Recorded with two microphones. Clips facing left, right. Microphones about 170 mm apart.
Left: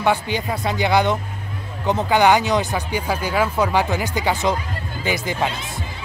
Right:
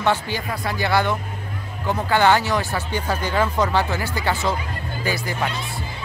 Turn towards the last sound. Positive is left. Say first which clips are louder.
# left 2 dB
turn(degrees=20)  # may be behind; listen again after turning